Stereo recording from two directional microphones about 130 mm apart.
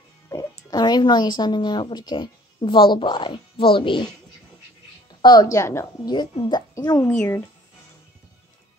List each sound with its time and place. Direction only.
0.3 s speech: 25° left (ahead or behind)
5.2 s a woman's voice: 30° left (ahead or behind)
6.0 s a woman's voice: 35° left (ahead or behind)
7.1 s speech: 15° left (ahead or behind)